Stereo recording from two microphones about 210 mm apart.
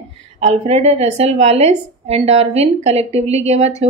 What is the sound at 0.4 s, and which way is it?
Speech, 30° right (ahead or behind).